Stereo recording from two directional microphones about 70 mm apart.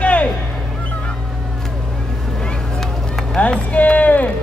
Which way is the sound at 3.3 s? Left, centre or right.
Centre.